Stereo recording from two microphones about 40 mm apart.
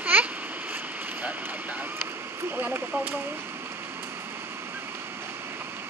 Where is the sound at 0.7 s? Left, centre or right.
Right.